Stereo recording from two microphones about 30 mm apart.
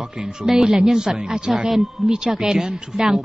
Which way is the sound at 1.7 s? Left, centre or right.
Centre.